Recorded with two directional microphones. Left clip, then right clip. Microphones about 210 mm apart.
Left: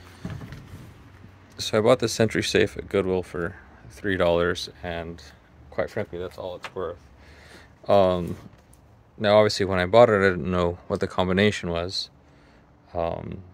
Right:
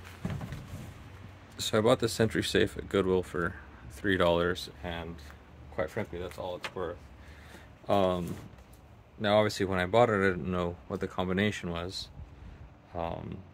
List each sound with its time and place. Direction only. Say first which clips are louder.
1.6 s speech: left 6 dB; 25° left (ahead or behind)
4.5 s speech: left 6 dB; 40° left (ahead or behind)
7.4 s a sound: left 8 dB; 50° left (ahead or behind)
9.2 s speech: left 8 dB; 50° left (ahead or behind)